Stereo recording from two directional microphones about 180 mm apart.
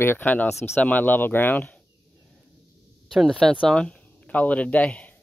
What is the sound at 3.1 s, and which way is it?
Speech, centre (ahead or behind).